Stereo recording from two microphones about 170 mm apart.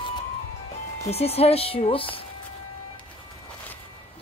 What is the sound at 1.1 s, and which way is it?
Speech, 35° left (ahead or behind).